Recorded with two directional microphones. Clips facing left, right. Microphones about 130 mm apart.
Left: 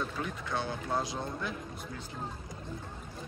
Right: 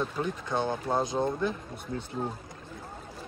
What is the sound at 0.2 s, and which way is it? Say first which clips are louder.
Speech: right 5 dB; 25° right (ahead or behind).